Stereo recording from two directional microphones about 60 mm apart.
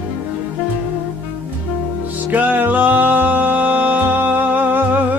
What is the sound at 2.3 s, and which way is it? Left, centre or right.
Music, right.